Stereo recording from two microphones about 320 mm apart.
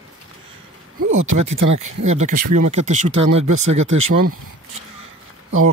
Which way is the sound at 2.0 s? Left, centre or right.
Right.